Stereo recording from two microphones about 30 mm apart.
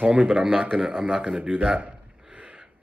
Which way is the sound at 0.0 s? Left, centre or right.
Right.